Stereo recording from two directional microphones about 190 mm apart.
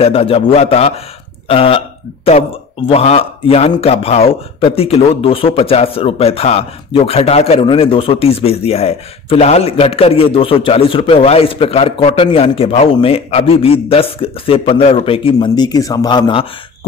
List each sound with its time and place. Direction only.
0.0 s a man's voice: 30° left (ahead or behind)
2.9 s a man's voice: 30° left (ahead or behind)